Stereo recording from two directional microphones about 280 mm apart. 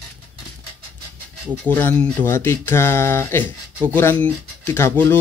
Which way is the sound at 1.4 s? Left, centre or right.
Centre.